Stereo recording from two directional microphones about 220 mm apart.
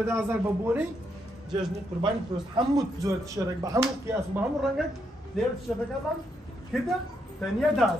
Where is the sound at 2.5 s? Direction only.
15° right (ahead or behind).